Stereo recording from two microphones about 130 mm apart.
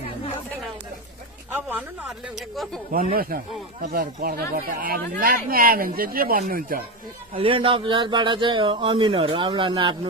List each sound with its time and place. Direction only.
1.7 s speech: 10° right (ahead or behind)
3.0 s speech: 90° right
7.3 s speech: 40° right (ahead or behind)